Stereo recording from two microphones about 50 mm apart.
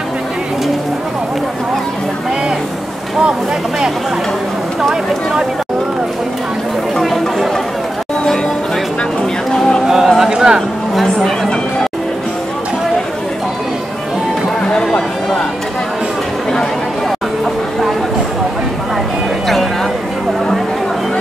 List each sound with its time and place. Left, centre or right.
7.0 s chatter: centre
9.6 s music: centre
9.8 s music: centre
11.0 s a sound: centre
14.7 s music: centre